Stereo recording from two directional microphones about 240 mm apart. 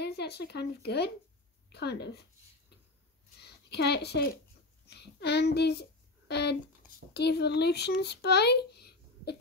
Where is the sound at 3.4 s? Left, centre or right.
Left.